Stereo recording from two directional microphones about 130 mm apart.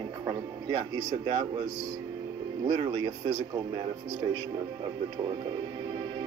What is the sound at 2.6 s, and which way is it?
Speech, 40° right (ahead or behind).